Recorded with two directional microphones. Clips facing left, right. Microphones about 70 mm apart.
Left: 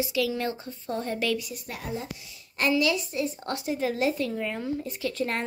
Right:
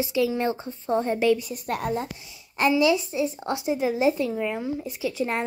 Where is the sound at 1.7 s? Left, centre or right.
Right.